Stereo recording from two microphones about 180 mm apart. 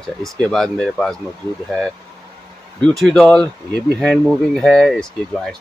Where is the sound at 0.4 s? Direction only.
Centre (ahead or behind).